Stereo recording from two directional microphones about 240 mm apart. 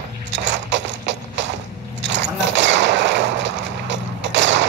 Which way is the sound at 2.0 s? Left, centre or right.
Right.